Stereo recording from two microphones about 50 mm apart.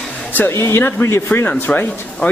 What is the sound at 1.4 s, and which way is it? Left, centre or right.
Speech, left.